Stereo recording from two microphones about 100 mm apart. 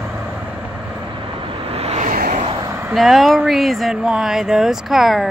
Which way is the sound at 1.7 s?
90° right.